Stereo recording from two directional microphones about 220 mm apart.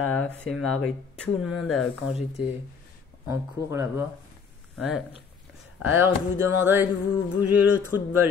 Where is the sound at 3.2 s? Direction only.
10° right (ahead or behind).